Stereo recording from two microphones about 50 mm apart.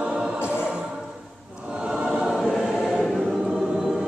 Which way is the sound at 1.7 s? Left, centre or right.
Centre.